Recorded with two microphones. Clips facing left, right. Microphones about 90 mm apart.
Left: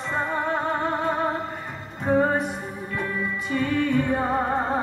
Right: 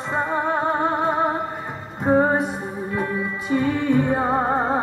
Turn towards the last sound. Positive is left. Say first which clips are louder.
# right 3 dB
turn(degrees=-30)  # may be behind; listen again after turning